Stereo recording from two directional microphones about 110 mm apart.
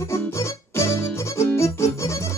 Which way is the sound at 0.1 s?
25° left (ahead or behind).